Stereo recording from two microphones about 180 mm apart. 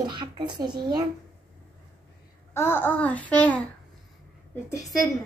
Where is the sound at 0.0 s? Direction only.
25° right (ahead or behind).